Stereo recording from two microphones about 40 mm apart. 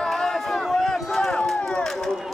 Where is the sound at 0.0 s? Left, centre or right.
Centre.